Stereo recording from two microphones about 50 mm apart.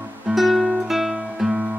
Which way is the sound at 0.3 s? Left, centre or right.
Centre.